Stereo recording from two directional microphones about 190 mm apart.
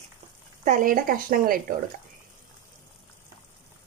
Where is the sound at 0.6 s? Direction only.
45° right (ahead or behind).